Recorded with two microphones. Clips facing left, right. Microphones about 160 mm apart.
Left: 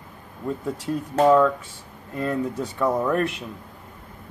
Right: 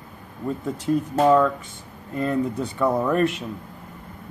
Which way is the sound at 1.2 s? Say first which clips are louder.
Left 2 dB; centre (ahead or behind).